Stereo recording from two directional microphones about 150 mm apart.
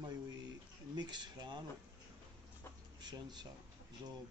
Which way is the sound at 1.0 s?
30° right (ahead or behind).